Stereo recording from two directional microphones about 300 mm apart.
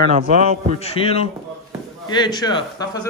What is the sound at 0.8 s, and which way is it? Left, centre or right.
A man's voice, centre.